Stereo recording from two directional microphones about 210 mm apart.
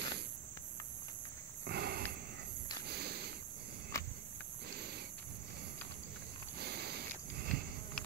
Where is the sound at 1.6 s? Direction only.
50° right (ahead or behind).